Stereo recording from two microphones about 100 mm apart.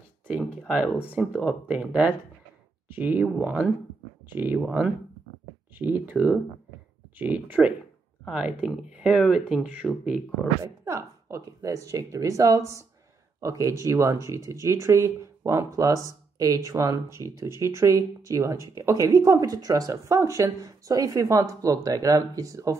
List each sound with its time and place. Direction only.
0.4 s a sound: 5° right (ahead or behind)
1.4 s speech: 10° right (ahead or behind)
5.8 s speech: 15° right (ahead or behind)
10.6 s a woman's voice: 30° right (ahead or behind)